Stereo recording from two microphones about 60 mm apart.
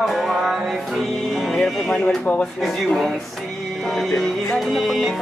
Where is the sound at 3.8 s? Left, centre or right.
Centre.